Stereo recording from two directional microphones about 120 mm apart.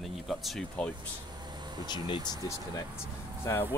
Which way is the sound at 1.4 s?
35° right (ahead or behind).